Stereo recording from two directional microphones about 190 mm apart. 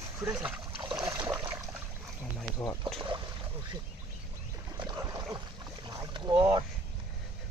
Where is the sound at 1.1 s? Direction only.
10° right (ahead or behind).